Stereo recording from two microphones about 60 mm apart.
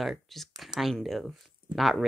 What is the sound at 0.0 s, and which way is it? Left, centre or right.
Speech, centre.